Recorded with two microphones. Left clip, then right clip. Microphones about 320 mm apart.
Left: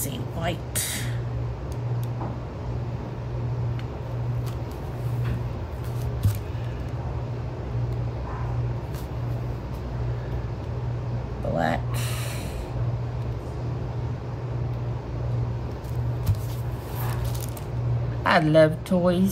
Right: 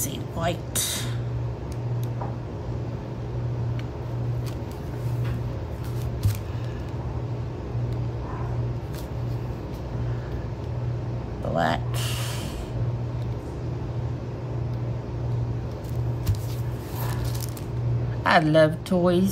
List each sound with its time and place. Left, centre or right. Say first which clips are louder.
0.4 s speech: right 3 dB; centre
11.5 s music: right 1 dB; centre
18.2 s speech: even; centre